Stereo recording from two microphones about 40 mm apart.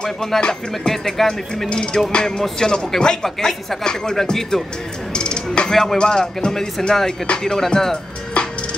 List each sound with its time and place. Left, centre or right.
0.0 s speech: centre
1.7 s music: left
2.6 s speech: centre
5.1 s a sound: left
5.7 s speech: centre
5.9 s speech: centre
8.4 s music: left